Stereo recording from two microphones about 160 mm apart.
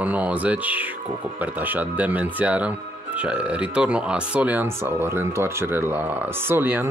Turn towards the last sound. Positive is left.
turn(degrees=-15)  # may be behind; listen again after turning